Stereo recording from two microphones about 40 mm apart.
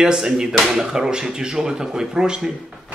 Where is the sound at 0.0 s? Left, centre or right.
Centre.